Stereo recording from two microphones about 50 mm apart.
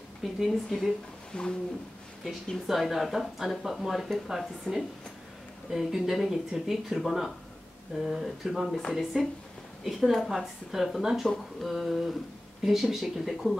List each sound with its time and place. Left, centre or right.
0.2 s speech: centre
1.3 s speech: centre
2.2 s speech: centre